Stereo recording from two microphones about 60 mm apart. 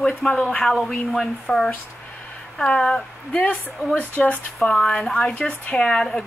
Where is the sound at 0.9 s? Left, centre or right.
Centre.